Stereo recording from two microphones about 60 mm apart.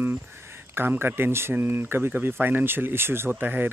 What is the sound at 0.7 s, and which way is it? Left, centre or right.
Speech, right.